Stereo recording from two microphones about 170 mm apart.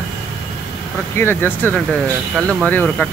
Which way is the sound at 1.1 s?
15° left (ahead or behind).